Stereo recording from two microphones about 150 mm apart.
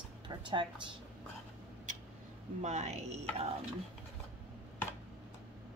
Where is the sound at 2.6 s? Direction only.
50° right (ahead or behind).